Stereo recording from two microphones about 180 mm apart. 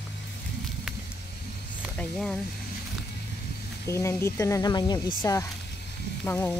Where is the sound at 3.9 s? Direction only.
15° left (ahead or behind).